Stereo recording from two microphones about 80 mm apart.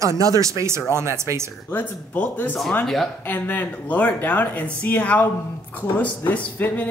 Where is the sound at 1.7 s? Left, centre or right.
Left.